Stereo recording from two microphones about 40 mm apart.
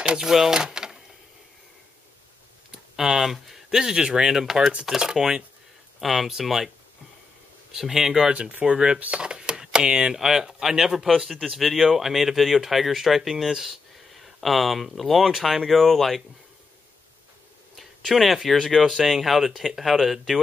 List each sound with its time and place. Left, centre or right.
0.0 s a sound: centre
2.7 s speech: centre
7.7 s speech: centre
8.3 s speech: right
8.7 s speech: centre
9.2 s a sound: right
10.1 s speech: centre
17.7 s speech: centre